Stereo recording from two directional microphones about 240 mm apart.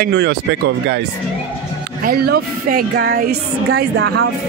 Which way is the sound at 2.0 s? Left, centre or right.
Right.